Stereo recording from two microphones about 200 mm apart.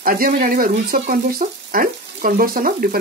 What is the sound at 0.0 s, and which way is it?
Speech, 45° right (ahead or behind).